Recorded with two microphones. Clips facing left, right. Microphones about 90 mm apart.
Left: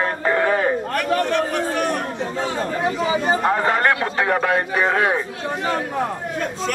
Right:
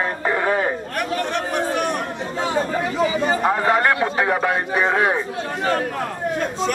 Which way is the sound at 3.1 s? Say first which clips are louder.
Left 1 dB; 25° left (ahead or behind).